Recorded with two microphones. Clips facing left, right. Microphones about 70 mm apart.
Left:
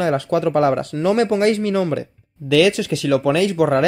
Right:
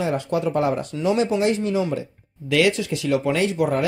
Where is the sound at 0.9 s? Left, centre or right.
Left.